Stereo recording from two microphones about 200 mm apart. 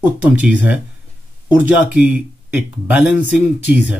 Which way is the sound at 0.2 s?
10° right (ahead or behind).